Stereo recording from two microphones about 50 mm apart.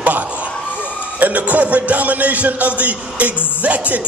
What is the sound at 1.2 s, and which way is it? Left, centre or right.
Music, right.